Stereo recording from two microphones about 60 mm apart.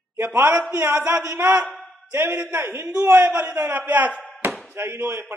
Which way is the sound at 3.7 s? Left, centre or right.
Right.